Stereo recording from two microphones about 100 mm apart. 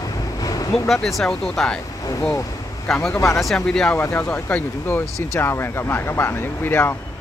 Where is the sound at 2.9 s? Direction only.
Centre (ahead or behind).